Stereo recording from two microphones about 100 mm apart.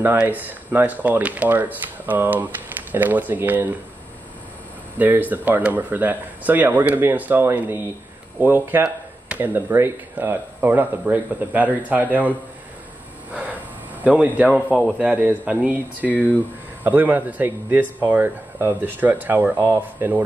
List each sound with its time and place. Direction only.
0.2 s speech: 15° right (ahead or behind)
4.9 s speech: 20° right (ahead or behind)
14.0 s speech: 15° right (ahead or behind)
16.1 s speech: 15° left (ahead or behind)
16.8 s speech: 20° right (ahead or behind)